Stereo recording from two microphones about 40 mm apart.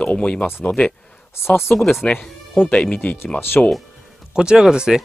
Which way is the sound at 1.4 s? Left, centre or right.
Left.